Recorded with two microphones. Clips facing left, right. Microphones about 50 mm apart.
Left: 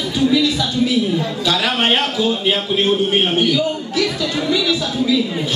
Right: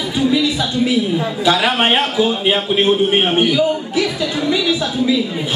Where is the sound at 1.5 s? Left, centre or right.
Centre.